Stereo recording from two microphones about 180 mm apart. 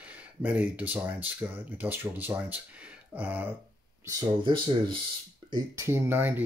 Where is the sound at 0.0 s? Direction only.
5° right (ahead or behind).